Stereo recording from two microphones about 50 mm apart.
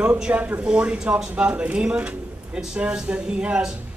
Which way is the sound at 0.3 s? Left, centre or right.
Right.